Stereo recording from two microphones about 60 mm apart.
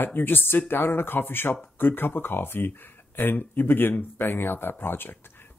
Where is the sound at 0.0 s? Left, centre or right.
Left.